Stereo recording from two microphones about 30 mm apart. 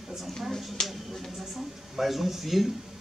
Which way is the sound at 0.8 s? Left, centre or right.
Left.